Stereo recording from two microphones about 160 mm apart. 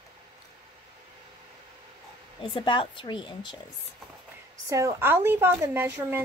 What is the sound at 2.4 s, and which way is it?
Speech, 35° left (ahead or behind).